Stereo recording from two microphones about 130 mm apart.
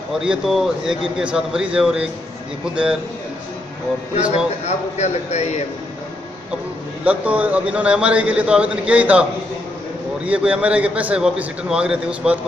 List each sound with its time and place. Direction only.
0.2 s a man's voice: 5° right (ahead or behind)
4.6 s a man's voice: 60° left (ahead or behind)
7.1 s a man's voice: 10° right (ahead or behind)
10.2 s a man's voice: 10° right (ahead or behind)